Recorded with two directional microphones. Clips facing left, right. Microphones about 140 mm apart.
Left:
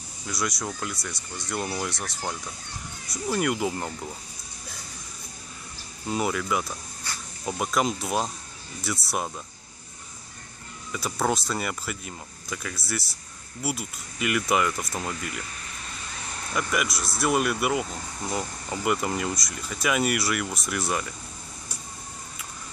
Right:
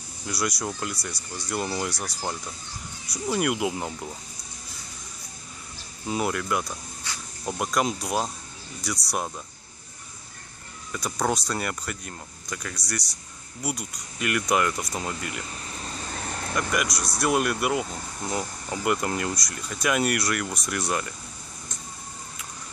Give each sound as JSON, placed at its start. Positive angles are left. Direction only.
{"t": 0.3, "sound": "speech", "side_deg": 0}
{"t": 6.0, "sound": "speech", "side_deg": 0}
{"t": 10.9, "sound": "speech", "side_deg": 5}
{"t": 15.7, "sound": "vehicle", "side_deg": -35}
{"t": 16.5, "sound": "speech", "side_deg": 0}